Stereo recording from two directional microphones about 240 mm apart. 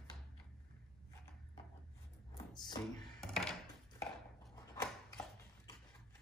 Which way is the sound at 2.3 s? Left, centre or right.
Centre.